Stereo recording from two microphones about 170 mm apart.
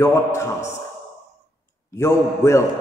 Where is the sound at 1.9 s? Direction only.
15° left (ahead or behind).